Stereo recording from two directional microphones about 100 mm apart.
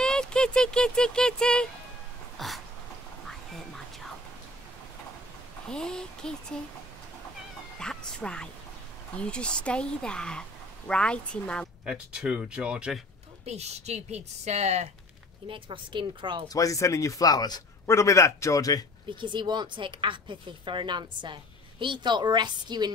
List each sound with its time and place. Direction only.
0.0 s speech: 5° left (ahead or behind)
2.3 s a sound: centre (ahead or behind)
3.3 s music: 5° left (ahead or behind)
5.7 s speech: 5° left (ahead or behind)
7.8 s speech: 5° left (ahead or behind)
11.8 s speech: 10° right (ahead or behind)
13.5 s a woman's voice: 90° right
15.4 s a woman's voice: 60° right (ahead or behind)
16.4 s speech: 35° left (ahead or behind)
17.9 s speech: 30° left (ahead or behind)
19.1 s a woman's voice: 50° right (ahead or behind)